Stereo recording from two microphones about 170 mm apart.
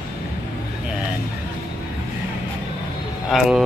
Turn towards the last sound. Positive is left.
turn(degrees=0)  # may be behind; listen again after turning